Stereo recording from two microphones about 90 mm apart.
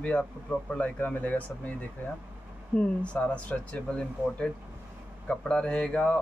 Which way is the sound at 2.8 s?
15° left (ahead or behind).